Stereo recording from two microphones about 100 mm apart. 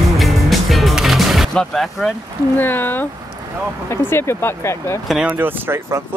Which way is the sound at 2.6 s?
20° left (ahead or behind).